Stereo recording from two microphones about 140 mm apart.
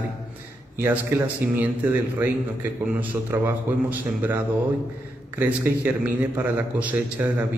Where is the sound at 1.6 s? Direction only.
15° right (ahead or behind).